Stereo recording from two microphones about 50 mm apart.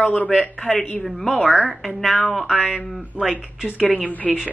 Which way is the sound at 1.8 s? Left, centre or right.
Centre.